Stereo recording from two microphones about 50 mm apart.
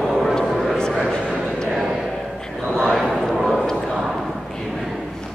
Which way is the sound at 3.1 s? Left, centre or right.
Centre.